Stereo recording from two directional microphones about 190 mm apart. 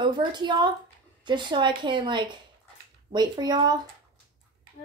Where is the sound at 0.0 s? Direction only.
25° right (ahead or behind).